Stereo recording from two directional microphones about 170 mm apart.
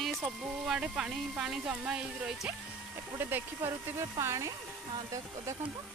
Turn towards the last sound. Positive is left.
turn(degrees=-20)  # may be behind; listen again after turning